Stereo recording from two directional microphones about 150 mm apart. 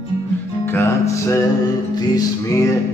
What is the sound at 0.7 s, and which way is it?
Music, 20° left (ahead or behind).